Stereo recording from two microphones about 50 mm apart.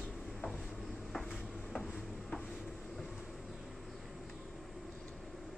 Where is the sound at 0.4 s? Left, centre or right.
Left.